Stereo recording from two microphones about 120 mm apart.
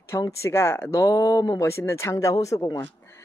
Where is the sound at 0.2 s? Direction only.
25° left (ahead or behind).